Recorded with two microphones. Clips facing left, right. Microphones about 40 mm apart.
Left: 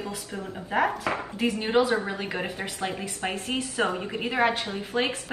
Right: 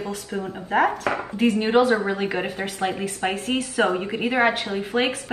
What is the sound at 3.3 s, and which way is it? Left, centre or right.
Speech, right.